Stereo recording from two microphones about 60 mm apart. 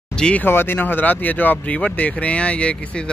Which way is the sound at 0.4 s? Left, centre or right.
Left.